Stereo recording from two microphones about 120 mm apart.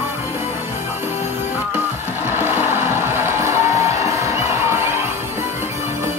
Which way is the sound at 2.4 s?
20° right (ahead or behind).